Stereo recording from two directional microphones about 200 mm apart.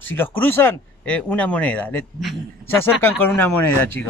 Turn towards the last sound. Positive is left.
turn(degrees=10)  # may be behind; listen again after turning